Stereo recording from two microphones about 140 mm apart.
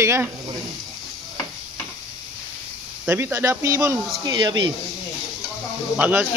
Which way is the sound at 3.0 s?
15° right (ahead or behind).